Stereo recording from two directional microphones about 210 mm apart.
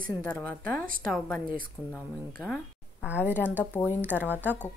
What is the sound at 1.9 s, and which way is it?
A woman's voice, 5° left (ahead or behind).